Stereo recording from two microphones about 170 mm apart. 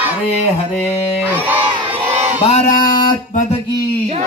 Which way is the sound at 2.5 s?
45° left (ahead or behind).